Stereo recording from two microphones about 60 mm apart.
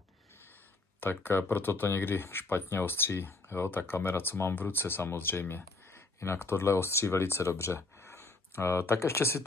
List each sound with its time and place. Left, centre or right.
1.0 s speech: left